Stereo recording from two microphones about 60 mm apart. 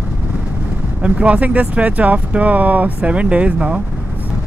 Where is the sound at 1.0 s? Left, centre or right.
Centre.